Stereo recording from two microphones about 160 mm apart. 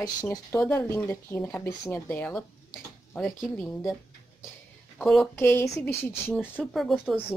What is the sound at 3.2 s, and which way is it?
Speech, centre (ahead or behind).